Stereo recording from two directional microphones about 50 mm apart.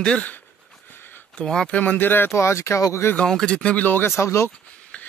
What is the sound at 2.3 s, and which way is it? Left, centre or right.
Speech, left.